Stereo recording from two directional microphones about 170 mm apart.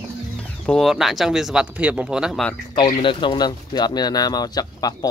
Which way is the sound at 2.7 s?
30° left (ahead or behind).